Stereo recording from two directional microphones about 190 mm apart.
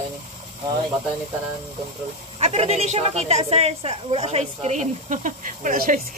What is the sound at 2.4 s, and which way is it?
A woman's voice, 35° right (ahead or behind).